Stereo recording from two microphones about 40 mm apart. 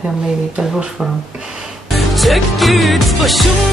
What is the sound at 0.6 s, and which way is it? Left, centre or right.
Speech, centre.